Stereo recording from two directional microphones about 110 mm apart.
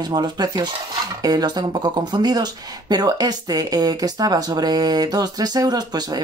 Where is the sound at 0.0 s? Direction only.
40° right (ahead or behind).